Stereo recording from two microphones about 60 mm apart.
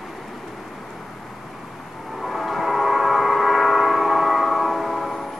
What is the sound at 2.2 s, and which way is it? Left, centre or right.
Train, centre.